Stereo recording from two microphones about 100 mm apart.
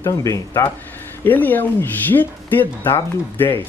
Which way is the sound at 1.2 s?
20° left (ahead or behind).